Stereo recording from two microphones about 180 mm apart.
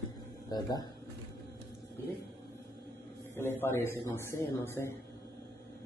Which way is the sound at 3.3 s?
15° left (ahead or behind).